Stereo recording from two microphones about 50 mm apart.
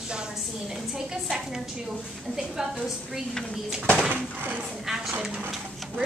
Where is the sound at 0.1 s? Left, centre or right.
Centre.